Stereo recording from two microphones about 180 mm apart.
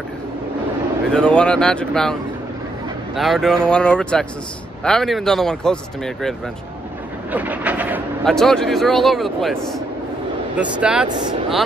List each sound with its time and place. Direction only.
1.1 s a man's voice: 5° left (ahead or behind)
3.2 s a man's voice: centre (ahead or behind)
7.3 s a sound: 10° right (ahead or behind)
8.3 s a man's voice: 5° left (ahead or behind)
11.1 s speech: 25° right (ahead or behind)